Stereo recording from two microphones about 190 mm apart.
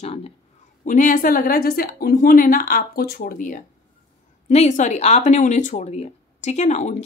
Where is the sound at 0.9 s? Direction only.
45° left (ahead or behind).